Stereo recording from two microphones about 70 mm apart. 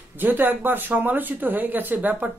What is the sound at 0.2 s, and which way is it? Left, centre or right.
Speech, right.